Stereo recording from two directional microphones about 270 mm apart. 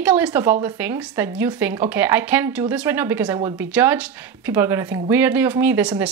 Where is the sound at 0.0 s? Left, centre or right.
Centre.